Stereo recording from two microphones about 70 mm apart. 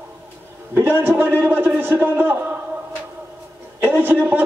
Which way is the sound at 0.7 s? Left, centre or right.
Right.